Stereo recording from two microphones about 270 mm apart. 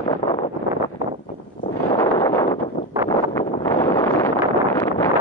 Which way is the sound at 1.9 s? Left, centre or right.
Centre.